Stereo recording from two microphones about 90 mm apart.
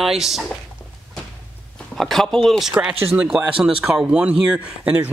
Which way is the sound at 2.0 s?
5° left (ahead or behind).